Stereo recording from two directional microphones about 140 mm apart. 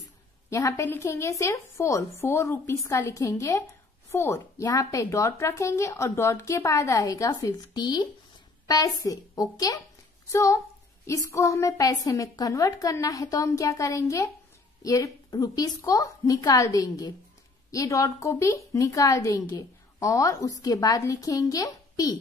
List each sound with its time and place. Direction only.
0.5 s a woman's voice: 20° left (ahead or behind)